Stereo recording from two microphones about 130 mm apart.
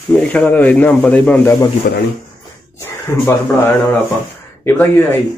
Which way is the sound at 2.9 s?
20° left (ahead or behind).